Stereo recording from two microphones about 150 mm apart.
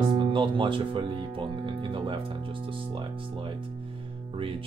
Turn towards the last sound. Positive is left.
turn(degrees=-35)  # may be behind; listen again after turning